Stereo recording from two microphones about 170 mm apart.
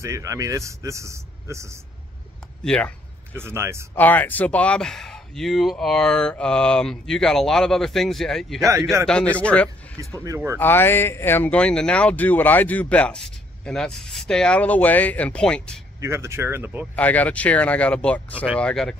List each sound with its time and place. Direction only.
0.0 s speech: 20° right (ahead or behind)
2.6 s speech: 5° left (ahead or behind)
3.3 s speech: 15° right (ahead or behind)
3.9 s speech: 10° left (ahead or behind)
9.9 s speech: 20° right (ahead or behind)
10.6 s speech: 10° left (ahead or behind)
16.0 s speech: 15° right (ahead or behind)
16.9 s speech: 10° left (ahead or behind)